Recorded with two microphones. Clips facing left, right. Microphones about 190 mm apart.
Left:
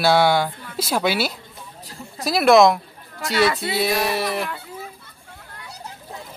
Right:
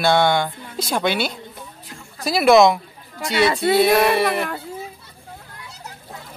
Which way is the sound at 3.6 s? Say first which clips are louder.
Right 7 dB; 55° right (ahead or behind).